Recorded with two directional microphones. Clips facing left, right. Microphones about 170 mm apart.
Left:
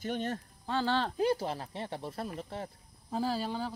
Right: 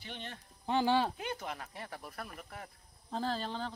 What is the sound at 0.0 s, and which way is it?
Speech, 45° left (ahead or behind).